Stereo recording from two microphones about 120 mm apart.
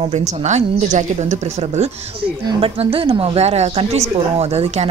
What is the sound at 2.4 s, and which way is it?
A woman's voice, 50° right (ahead or behind).